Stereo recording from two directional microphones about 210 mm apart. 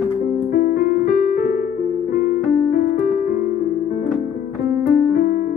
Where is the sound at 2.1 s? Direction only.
50° left (ahead or behind).